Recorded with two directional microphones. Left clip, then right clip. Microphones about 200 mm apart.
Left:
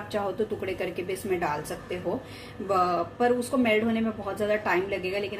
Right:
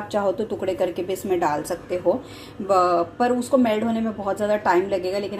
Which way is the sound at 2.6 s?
30° right (ahead or behind).